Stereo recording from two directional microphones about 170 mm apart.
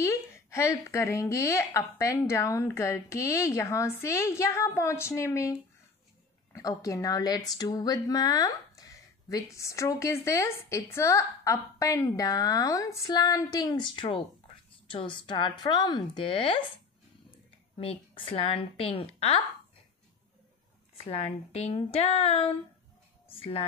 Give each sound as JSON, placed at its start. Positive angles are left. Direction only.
{"t": 0.0, "sound": "a woman's voice", "side_deg": 15}
{"t": 17.7, "sound": "a woman's voice", "side_deg": 35}
{"t": 21.0, "sound": "a woman's voice", "side_deg": 35}